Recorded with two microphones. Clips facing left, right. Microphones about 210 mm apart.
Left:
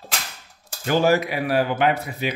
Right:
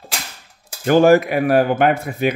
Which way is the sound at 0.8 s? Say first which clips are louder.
Right 7 dB; 50° right (ahead or behind).